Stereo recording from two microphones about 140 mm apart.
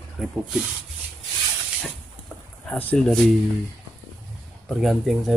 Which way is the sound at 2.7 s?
10° left (ahead or behind).